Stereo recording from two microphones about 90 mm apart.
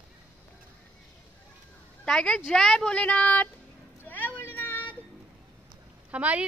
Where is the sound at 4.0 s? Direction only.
20° left (ahead or behind).